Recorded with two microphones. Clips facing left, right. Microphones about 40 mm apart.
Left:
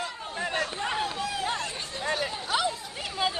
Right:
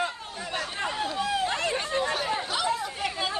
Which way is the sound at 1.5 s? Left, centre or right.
Right.